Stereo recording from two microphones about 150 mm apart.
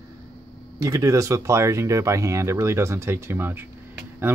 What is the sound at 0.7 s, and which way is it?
Speech, 20° right (ahead or behind).